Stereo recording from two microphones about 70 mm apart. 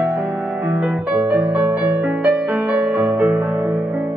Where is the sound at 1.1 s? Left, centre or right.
Right.